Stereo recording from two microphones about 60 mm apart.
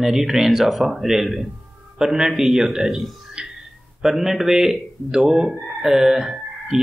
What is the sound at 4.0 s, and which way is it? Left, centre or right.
Speech, centre.